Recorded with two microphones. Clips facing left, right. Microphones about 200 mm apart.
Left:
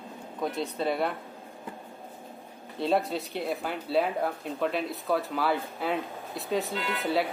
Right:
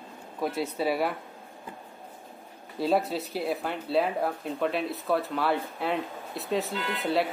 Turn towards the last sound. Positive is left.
turn(degrees=0)  # may be behind; listen again after turning